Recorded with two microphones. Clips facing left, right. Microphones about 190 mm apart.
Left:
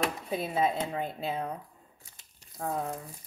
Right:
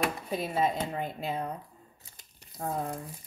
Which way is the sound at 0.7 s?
5° left (ahead or behind).